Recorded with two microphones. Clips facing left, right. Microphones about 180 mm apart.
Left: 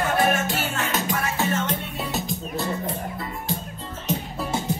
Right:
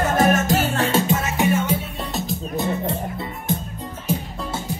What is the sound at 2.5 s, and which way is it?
Music, 25° right (ahead or behind).